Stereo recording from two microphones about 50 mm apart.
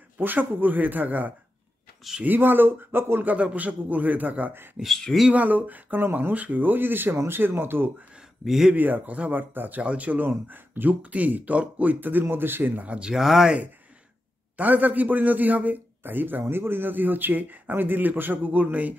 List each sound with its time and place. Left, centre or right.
0.2 s a man's voice: right
3.5 s a man's voice: right
8.5 s speech: centre
8.7 s a man's voice: right
9.8 s speech: right
10.2 s a man's voice: right
11.0 s a man's voice: right
12.8 s speech: right
13.1 s speech: centre
14.6 s a man's voice: right